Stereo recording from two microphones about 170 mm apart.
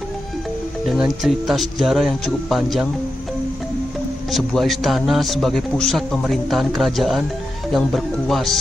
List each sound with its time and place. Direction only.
0.8 s a man's voice: centre (ahead or behind)
4.3 s a man's voice: centre (ahead or behind)